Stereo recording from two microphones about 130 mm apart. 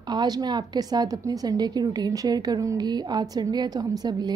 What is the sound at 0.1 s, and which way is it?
A woman's voice, 35° right (ahead or behind).